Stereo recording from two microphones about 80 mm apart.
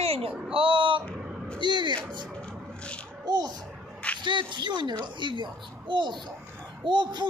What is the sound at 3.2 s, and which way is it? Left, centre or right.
Speech, right.